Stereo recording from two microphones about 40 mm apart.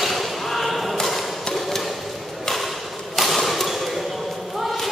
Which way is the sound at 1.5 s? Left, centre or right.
Centre.